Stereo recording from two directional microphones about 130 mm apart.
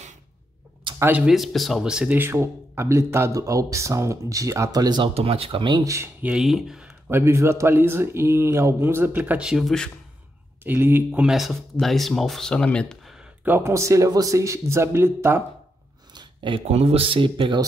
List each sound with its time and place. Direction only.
0.9 s speech: 15° right (ahead or behind)
1.2 s speech: centre (ahead or behind)
2.1 s speech: 20° right (ahead or behind)
5.1 s speech: 50° right (ahead or behind); by 6.0 s 25° right (ahead or behind)
6.2 s speech: 5° right (ahead or behind)
7.1 s speech: 20° right (ahead or behind); by 9.8 s centre (ahead or behind)
10.6 s speech: 15° right (ahead or behind)
11.1 s speech: 5° right (ahead or behind)
13.4 s speech: 15° right (ahead or behind)
16.2 s a sound: 40° right (ahead or behind)
16.6 s speech: 55° right (ahead or behind)